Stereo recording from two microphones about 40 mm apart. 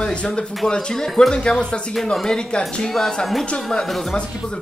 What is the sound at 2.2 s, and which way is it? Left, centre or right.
Speech, centre.